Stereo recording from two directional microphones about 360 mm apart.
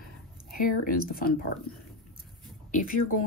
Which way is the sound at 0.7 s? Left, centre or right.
Left.